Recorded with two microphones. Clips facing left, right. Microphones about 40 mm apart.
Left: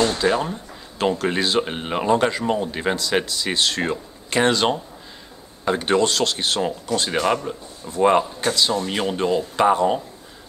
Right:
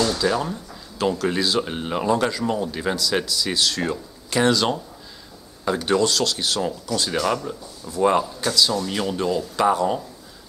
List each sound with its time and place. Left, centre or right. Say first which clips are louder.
0.0 s speech: left 2 dB; left